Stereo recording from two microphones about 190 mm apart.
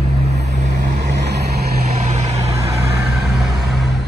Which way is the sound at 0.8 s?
60° right (ahead or behind).